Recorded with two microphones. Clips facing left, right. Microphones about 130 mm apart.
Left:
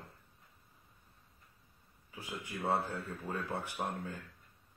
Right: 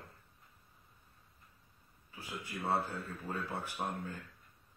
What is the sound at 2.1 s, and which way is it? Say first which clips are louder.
Speech: left 1 dB; 15° left (ahead or behind).